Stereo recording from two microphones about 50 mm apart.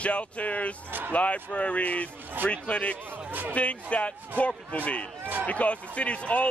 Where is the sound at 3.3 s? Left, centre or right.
Right.